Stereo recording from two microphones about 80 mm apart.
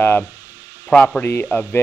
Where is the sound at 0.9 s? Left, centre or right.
Centre.